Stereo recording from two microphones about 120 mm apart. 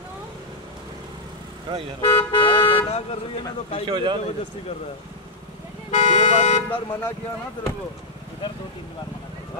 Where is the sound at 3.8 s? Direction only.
40° right (ahead or behind).